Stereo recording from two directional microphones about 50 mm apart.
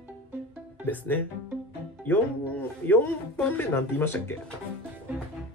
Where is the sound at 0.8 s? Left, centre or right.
Left.